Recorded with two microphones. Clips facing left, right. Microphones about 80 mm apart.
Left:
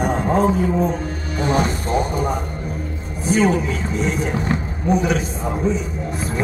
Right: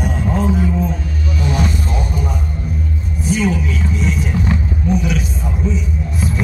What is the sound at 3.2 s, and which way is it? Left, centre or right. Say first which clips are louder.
Vehicle: left 1 dB; left.